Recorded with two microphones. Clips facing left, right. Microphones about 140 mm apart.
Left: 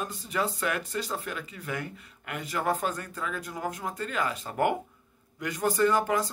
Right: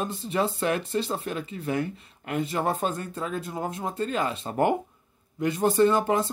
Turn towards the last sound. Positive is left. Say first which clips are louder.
# right 3 dB
turn(degrees=-25)  # may be behind; listen again after turning